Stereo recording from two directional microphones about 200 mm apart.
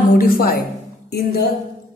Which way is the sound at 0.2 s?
45° left (ahead or behind).